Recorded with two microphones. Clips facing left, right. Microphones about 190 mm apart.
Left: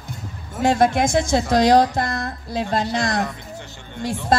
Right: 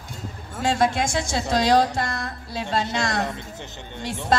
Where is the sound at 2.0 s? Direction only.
55° left (ahead or behind).